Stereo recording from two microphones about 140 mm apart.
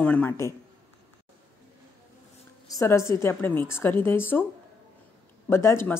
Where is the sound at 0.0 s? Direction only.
10° left (ahead or behind).